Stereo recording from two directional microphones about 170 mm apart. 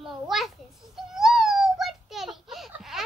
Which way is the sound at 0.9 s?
Centre (ahead or behind).